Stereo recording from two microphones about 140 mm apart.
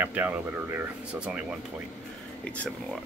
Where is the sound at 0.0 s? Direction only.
10° right (ahead or behind).